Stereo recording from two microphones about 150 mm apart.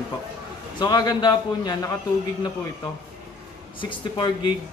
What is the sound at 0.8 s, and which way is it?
A man's voice, 30° left (ahead or behind).